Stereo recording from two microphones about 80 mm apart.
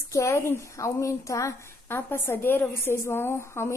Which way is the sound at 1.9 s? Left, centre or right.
Left.